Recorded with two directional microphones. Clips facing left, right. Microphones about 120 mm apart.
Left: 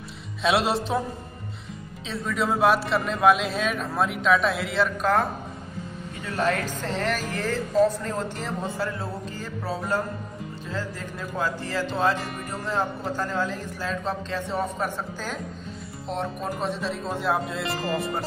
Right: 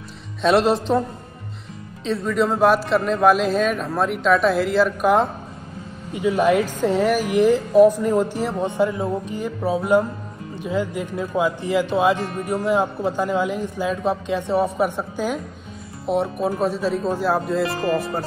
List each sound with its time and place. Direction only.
0.4 s a man's voice: centre (ahead or behind)
2.0 s a man's voice: centre (ahead or behind)
5.0 s a man's voice: 20° right (ahead or behind); by 18.2 s centre (ahead or behind)